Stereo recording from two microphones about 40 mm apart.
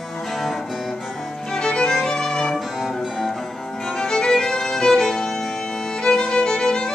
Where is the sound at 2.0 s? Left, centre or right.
Centre.